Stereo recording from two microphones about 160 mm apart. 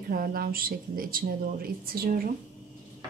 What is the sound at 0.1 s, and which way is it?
Speech, 65° right (ahead or behind).